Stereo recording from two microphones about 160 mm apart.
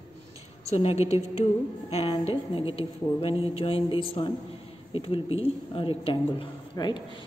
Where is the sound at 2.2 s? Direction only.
35° left (ahead or behind).